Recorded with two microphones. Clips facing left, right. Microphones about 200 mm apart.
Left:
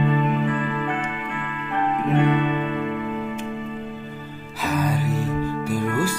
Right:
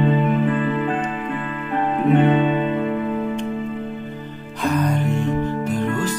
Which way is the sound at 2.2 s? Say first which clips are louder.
Right 4 dB; 25° right (ahead or behind).